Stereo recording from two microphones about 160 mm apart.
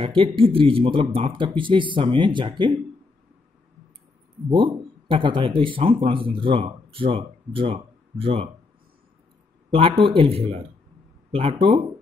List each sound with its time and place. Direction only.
0.0 s speech: 35° right (ahead or behind)
4.5 s speech: 30° right (ahead or behind)
9.7 s speech: 35° right (ahead or behind)